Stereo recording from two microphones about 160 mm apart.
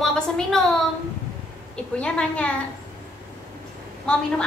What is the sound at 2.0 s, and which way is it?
Speech, 5° left (ahead or behind).